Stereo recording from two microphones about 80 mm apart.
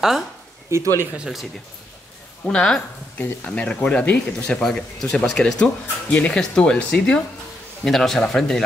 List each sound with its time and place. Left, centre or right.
0.7 s speech: right
1.1 s speech: centre
2.4 s speech: centre
3.2 s speech: left; by 8.6 s centre